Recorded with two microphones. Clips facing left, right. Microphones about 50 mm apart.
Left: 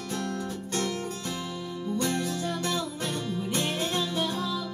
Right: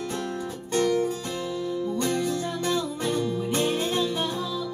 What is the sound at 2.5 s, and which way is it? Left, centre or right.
Music, centre.